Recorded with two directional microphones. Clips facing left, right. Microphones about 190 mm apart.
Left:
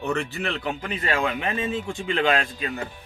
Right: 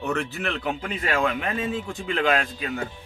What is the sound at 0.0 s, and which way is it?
A man's voice, 5° right (ahead or behind).